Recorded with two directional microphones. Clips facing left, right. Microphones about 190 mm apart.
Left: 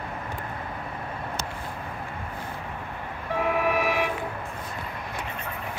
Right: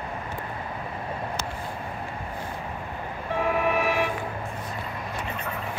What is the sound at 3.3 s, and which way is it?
Vehicle, 10° left (ahead or behind).